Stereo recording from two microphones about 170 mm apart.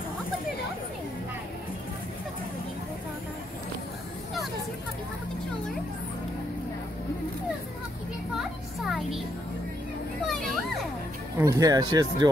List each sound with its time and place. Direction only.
8.4 s music: centre (ahead or behind)
10.2 s children playing: centre (ahead or behind)
11.3 s speech: 20° right (ahead or behind)